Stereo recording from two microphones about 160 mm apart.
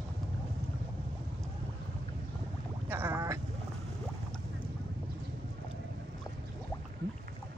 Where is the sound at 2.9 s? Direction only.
15° right (ahead or behind).